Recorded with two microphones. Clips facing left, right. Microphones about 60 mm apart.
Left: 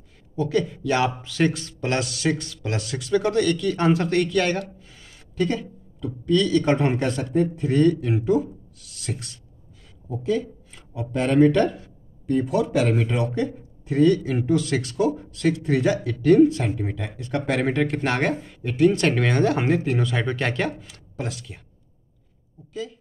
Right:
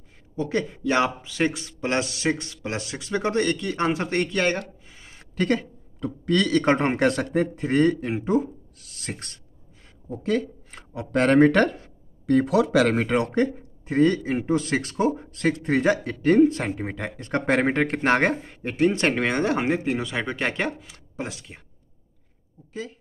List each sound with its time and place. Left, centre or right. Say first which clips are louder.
0.4 s speech: left 3 dB; right
5.3 s speech: right 1 dB; right
10.2 s speech: even; right
12.9 s speech: right 2 dB; right
13.8 s speech: left 2 dB; right
20.0 s speech: left 2 dB; centre
22.7 s speech: left 2 dB; right